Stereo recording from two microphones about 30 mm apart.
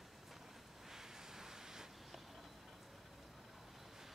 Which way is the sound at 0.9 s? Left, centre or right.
Centre.